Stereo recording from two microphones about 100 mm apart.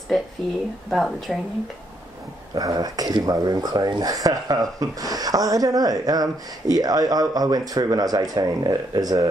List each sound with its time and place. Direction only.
0.8 s speech: 5° left (ahead or behind)
2.5 s speech: 40° right (ahead or behind)